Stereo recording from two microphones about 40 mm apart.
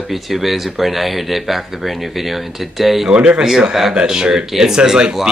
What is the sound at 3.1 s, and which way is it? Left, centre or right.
Speech, right.